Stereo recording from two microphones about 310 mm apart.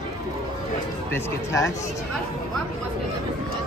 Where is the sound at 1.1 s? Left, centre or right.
Centre.